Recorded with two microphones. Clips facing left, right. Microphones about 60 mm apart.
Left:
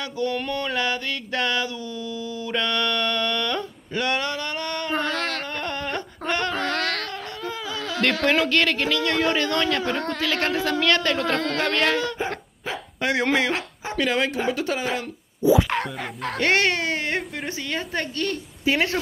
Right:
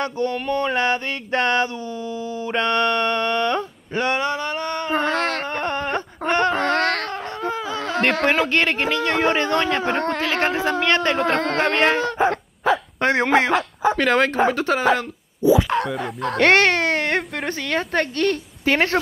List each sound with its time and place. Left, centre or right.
0.0 s a sound: right
13.2 s speech: right
13.9 s speech: right
16.3 s a woman's voice: right